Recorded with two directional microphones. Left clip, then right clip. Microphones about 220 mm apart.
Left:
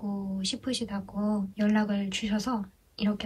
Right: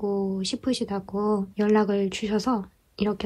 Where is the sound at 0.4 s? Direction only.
25° right (ahead or behind).